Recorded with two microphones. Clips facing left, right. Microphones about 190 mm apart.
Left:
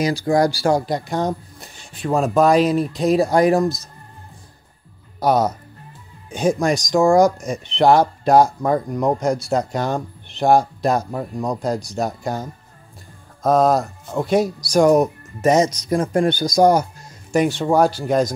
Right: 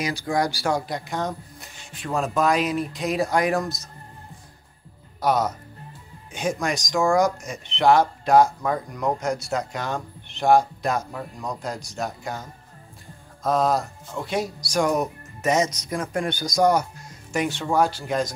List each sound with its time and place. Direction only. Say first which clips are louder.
0.0 s speech: left 7 dB; 35° left (ahead or behind)
5.2 s speech: left 5 dB; 35° left (ahead or behind)